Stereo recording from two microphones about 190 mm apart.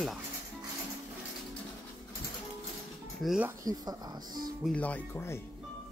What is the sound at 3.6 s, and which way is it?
Speech, 20° right (ahead or behind).